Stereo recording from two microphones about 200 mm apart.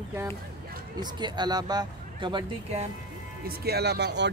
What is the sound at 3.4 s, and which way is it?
Speech, 50° right (ahead or behind).